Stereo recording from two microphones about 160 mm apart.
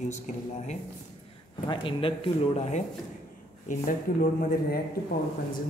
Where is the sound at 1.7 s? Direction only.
30° left (ahead or behind).